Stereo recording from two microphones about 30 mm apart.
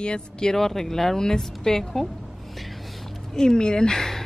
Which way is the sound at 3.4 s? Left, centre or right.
Left.